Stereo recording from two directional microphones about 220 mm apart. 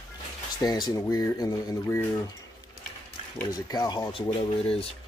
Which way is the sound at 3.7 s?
20° left (ahead or behind).